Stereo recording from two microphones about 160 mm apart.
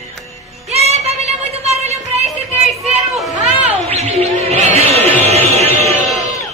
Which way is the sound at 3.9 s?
40° right (ahead or behind).